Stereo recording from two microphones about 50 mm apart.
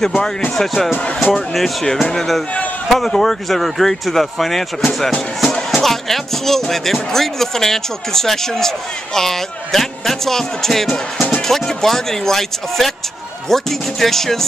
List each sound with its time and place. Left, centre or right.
0.6 s speech: centre